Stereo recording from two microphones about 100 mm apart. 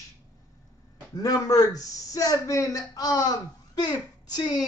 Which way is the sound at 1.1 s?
40° left (ahead or behind).